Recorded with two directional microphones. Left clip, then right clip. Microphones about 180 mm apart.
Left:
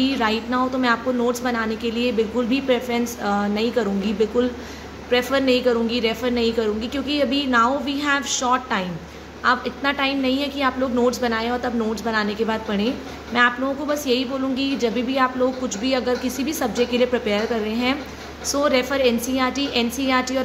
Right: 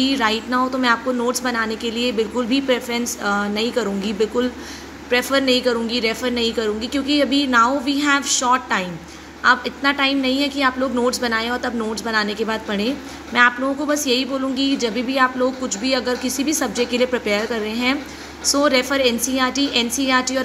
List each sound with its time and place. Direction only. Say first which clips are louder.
0.0 s a woman's voice: right 2 dB; 10° left (ahead or behind)